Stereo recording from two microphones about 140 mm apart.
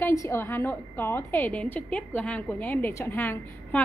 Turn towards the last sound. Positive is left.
turn(degrees=15)  # may be behind; listen again after turning